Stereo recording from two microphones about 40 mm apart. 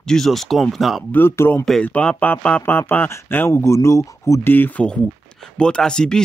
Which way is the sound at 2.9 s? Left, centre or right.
Left.